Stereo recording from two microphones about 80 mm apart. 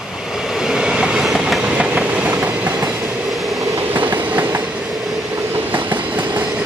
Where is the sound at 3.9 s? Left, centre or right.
Right.